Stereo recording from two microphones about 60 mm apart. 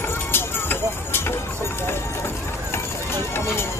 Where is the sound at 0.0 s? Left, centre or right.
Left.